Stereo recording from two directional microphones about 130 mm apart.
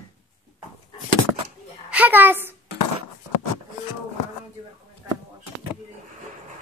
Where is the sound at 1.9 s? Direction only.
10° right (ahead or behind).